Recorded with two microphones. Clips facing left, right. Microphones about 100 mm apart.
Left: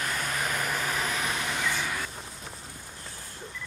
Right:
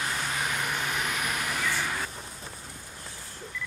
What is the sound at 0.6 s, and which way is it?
Vehicle, 35° left (ahead or behind).